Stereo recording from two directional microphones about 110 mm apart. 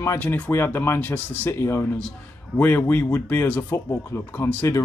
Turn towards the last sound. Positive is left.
turn(degrees=20)  # may be behind; listen again after turning